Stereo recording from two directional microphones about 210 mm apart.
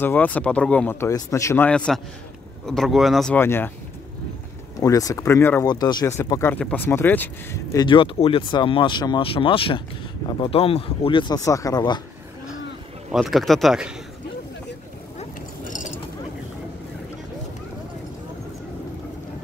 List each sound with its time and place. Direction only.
0.0 s speech: 10° left (ahead or behind)
4.7 s speech: 15° left (ahead or behind)
13.1 s speech: centre (ahead or behind)